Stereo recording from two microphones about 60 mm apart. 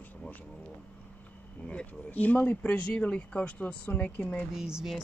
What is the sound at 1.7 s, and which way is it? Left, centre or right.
Speech, left.